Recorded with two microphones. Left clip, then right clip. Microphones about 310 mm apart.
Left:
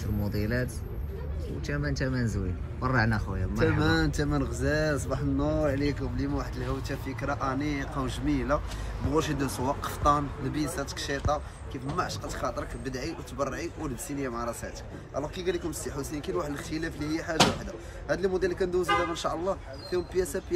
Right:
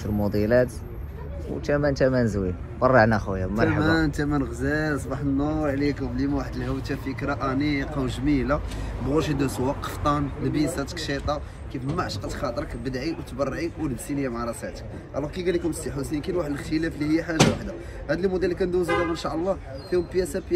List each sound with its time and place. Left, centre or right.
2.0 s speech: centre